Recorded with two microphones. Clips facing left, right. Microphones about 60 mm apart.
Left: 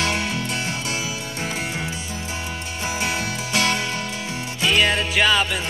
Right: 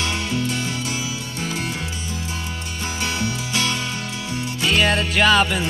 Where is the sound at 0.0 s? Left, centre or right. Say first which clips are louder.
Even; left.